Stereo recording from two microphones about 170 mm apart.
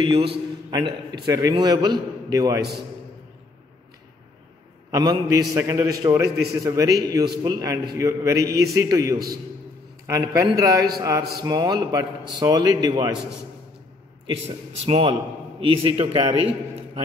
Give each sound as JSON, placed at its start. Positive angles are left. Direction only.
{"t": 0.0, "sound": "a man's voice", "side_deg": -30}
{"t": 4.9, "sound": "a man's voice", "side_deg": -20}
{"t": 14.9, "sound": "a man's voice", "side_deg": -35}